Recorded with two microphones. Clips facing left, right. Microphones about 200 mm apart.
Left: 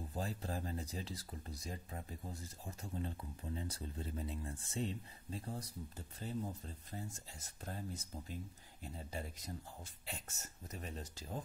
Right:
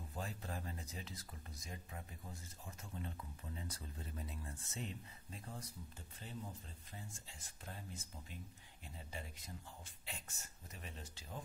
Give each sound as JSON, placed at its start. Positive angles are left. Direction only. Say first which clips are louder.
{"t": 0.1, "sound": "speech", "louder": "left 4 dB", "side_deg": 35}